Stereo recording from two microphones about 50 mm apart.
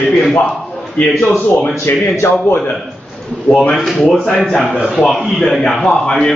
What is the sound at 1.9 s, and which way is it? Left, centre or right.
Speech, left.